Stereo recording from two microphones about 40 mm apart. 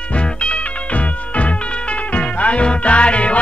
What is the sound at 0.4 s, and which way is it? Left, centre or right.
Music, left.